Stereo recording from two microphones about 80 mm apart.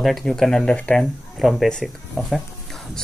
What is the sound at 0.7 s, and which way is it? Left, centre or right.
Speech, centre.